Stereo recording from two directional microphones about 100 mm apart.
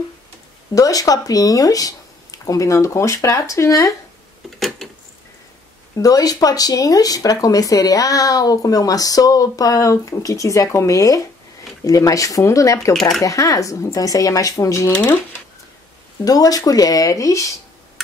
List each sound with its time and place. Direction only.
0.7 s speech: 35° left (ahead or behind)
4.6 s a sound: centre (ahead or behind)
5.9 s speech: 35° left (ahead or behind)
16.3 s speech: 40° left (ahead or behind)